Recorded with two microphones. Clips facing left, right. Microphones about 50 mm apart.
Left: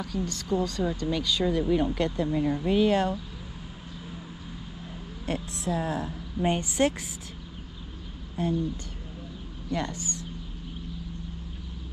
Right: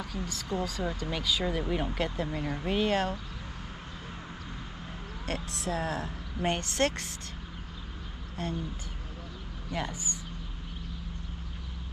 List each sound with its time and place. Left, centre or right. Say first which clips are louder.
0.0 s speech: left 5 dB; centre
5.2 s speech: left 3 dB; right
6.4 s a woman's voice: left 4 dB; centre
8.4 s speech: left 7 dB; centre
9.7 s speech: left 4 dB; centre